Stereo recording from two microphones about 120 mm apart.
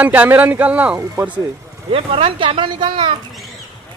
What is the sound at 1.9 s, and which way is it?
Speech, 50° right (ahead or behind).